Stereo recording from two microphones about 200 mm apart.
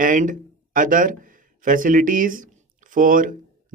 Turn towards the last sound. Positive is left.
turn(degrees=-40)  # may be behind; listen again after turning